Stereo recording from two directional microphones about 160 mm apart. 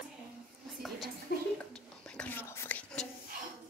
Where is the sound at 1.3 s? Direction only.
90° left.